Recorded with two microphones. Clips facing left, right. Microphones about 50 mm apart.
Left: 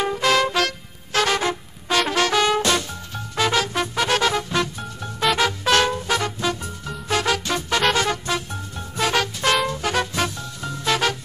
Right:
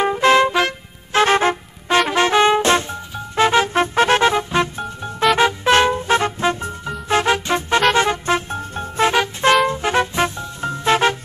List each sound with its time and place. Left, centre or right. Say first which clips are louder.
0.0 s trumpet: right 5 dB; right
0.5 s music: right 4 dB; right